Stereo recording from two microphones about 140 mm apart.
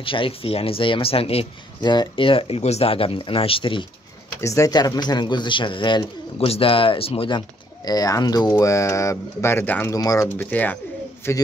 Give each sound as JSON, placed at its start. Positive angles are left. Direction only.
{"t": 0.0, "sound": "speech", "side_deg": 40}
{"t": 1.8, "sound": "speech", "side_deg": 30}
{"t": 4.4, "sound": "speech", "side_deg": 20}
{"t": 9.9, "sound": "speech", "side_deg": 25}